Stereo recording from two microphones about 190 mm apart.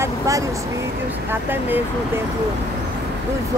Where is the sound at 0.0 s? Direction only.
15° right (ahead or behind).